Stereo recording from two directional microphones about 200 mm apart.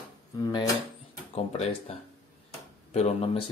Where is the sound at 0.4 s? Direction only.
20° left (ahead or behind).